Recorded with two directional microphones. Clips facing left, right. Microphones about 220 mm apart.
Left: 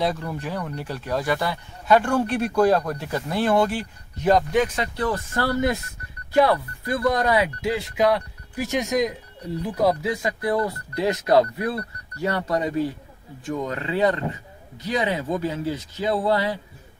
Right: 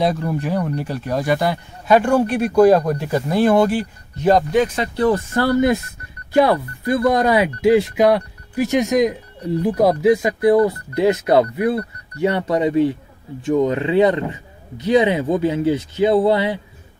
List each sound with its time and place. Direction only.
0.0 s speech: 15° right (ahead or behind)
4.2 s speech: 35° right (ahead or behind)